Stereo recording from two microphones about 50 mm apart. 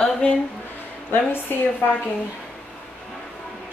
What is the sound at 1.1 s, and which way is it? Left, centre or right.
Speech, left.